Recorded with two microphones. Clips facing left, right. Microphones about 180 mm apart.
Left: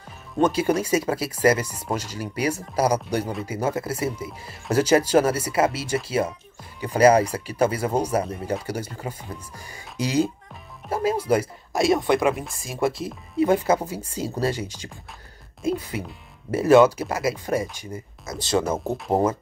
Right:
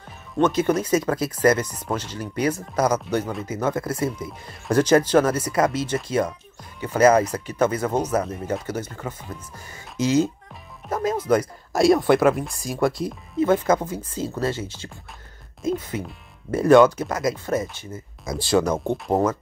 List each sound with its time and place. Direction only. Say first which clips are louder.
0.4 s speech: right 1 dB; 10° left (ahead or behind)
7.1 s speech: even; 30° left (ahead or behind)
7.4 s speech: right 1 dB; 10° left (ahead or behind)